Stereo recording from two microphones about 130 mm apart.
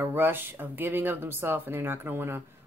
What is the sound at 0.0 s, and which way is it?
A woman's voice, 15° right (ahead or behind).